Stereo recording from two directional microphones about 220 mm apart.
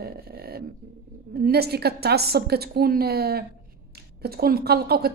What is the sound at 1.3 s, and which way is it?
A woman's voice, 45° right (ahead or behind).